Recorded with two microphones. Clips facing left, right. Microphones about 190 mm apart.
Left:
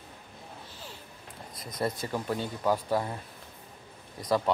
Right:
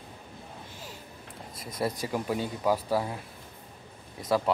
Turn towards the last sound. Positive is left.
turn(degrees=-5)  # may be behind; listen again after turning